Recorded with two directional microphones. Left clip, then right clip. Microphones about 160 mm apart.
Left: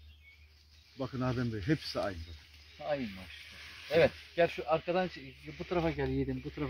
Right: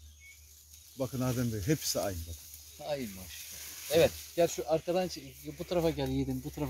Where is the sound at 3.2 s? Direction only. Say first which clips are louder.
Right 1 dB; centre (ahead or behind).